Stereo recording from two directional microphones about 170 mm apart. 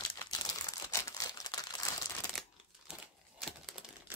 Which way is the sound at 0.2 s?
25° left (ahead or behind).